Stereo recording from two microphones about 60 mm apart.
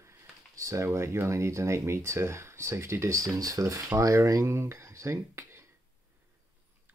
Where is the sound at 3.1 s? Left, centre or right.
Right.